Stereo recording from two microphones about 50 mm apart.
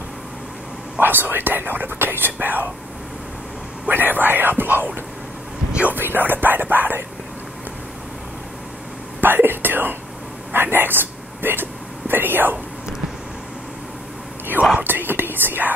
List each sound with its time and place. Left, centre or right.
0.9 s speech: right
3.9 s speech: right
5.9 s speech: right
9.2 s speech: right
10.5 s a sound: right
14.8 s speech: right